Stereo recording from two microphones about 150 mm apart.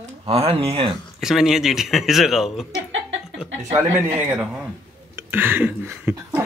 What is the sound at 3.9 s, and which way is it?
Speech, 15° right (ahead or behind).